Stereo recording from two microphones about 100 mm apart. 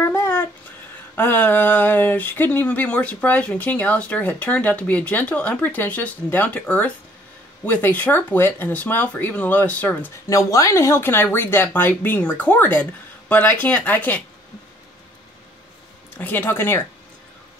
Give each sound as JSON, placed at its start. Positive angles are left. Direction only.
{"t": 0.0, "sound": "a sound", "side_deg": 30}
{"t": 1.1, "sound": "speech", "side_deg": 20}
{"t": 10.3, "sound": "speech", "side_deg": 30}
{"t": 16.2, "sound": "speech", "side_deg": 20}